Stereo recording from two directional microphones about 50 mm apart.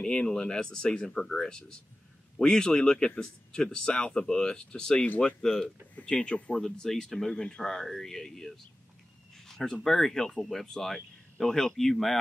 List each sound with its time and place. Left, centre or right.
0.0 s speech: centre
6.6 s speech: centre
9.5 s a sound: centre
9.8 s speech: centre